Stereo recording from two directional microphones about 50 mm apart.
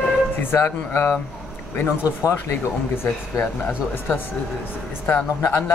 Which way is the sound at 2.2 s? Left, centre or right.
Left.